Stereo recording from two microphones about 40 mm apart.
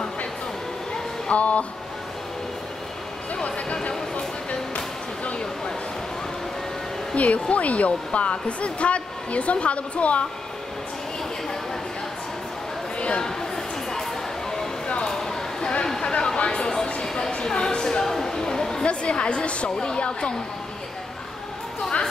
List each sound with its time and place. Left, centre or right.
1.3 s speech: left
3.8 s music: left
7.2 s speech: left
15.0 s a sound: centre
15.9 s a sound: left
18.9 s a woman's voice: left